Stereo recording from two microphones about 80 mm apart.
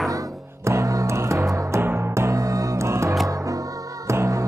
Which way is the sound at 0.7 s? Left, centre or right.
Right.